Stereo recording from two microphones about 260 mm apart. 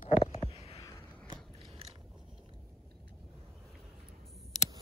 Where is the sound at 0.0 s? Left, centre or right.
Left.